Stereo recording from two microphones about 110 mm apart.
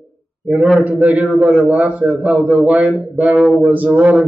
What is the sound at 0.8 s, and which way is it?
A man's voice, 15° right (ahead or behind).